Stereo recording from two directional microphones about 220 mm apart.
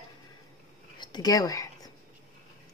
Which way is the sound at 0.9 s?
20° left (ahead or behind).